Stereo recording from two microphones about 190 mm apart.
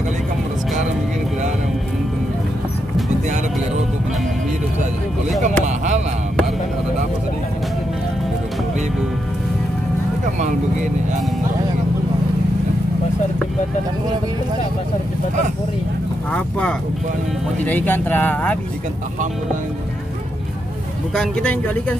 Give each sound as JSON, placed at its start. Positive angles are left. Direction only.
{"t": 5.6, "sound": "a sound", "side_deg": -40}
{"t": 16.3, "sound": "vehicle", "side_deg": 5}
{"t": 21.1, "sound": "speech", "side_deg": 5}